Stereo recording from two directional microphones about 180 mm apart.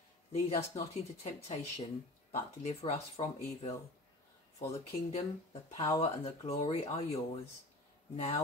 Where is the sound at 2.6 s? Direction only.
35° left (ahead or behind).